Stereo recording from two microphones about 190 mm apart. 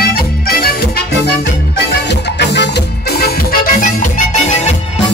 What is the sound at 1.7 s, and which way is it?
Music, 65° left (ahead or behind).